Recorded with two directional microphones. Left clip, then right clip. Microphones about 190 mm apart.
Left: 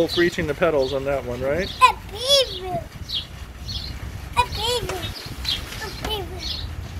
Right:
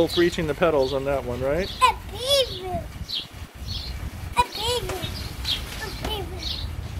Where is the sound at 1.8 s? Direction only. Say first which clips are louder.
Left 5 dB; 5° left (ahead or behind).